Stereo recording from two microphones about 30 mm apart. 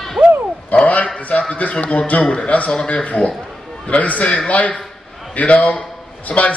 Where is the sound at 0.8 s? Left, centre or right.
Left.